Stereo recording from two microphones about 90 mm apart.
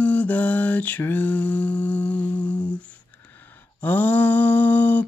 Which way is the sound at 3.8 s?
20° left (ahead or behind).